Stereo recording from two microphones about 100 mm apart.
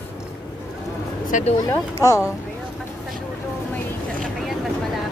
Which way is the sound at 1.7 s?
30° left (ahead or behind).